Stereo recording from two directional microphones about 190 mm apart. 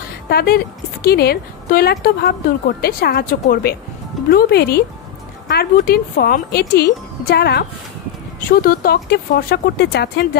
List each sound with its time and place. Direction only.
0.3 s a woman's voice: 55° left (ahead or behind)